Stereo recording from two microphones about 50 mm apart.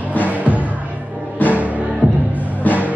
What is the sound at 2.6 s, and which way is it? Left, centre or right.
Music, left.